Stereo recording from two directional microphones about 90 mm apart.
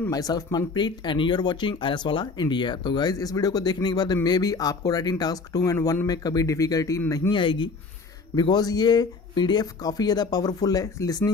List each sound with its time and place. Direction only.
0.1 s speech: 45° left (ahead or behind)
7.3 s speech: 65° left (ahead or behind)
8.4 s speech: 50° left (ahead or behind)